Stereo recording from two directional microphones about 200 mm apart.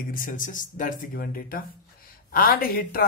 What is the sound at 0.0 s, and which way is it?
Speech, 45° left (ahead or behind).